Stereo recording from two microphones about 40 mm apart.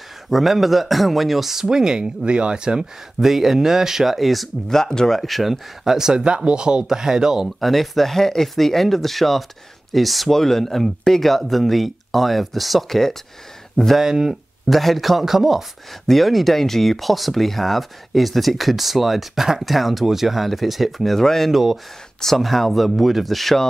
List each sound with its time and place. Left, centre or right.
0.3 s speech: centre
3.2 s speech: centre
4.6 s speech: centre
6.2 s speech: right
7.4 s speech: centre
13.9 s speech: centre
14.7 s speech: centre
15.9 s speech: centre
21.5 s speech: centre
22.2 s speech: centre